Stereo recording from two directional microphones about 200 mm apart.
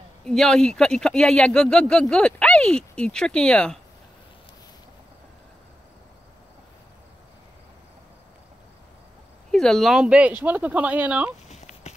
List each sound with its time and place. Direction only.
0.2 s speech: centre (ahead or behind)
9.5 s speech: centre (ahead or behind)
11.4 s a sound: 35° left (ahead or behind)